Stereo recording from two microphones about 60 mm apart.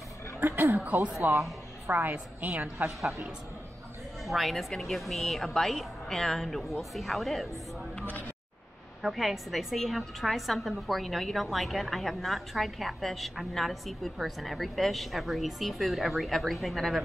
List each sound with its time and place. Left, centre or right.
0.7 s speech: right
1.2 s speech: right
1.9 s a woman's voice: right
4.2 s a woman's voice: centre
9.0 s a woman's voice: centre